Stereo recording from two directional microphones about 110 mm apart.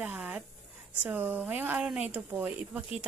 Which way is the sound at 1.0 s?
15° right (ahead or behind).